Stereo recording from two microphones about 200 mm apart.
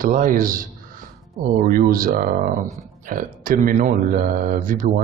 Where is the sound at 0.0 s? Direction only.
40° right (ahead or behind).